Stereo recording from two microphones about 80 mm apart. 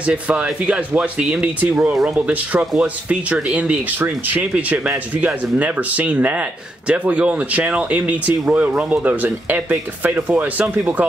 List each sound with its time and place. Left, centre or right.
0.0 s speech: centre